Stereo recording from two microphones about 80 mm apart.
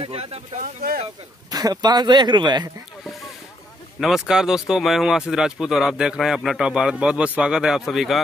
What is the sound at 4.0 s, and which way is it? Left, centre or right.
Speech, centre.